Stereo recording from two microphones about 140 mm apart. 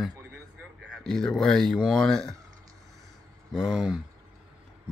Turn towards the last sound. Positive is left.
turn(degrees=-5)  # may be behind; listen again after turning